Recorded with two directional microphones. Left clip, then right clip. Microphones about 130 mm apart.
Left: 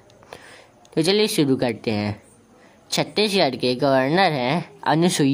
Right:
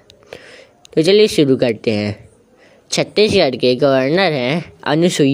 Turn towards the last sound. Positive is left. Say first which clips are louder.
# right 5 dB
turn(degrees=-15)  # may be behind; listen again after turning